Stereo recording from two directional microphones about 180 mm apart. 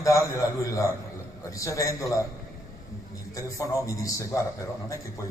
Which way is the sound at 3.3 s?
20° left (ahead or behind).